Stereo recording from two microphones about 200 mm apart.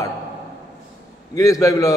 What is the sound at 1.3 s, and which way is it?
Speech, 15° left (ahead or behind).